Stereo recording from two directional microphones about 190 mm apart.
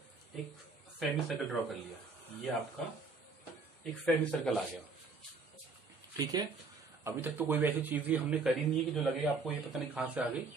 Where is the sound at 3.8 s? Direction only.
5° left (ahead or behind).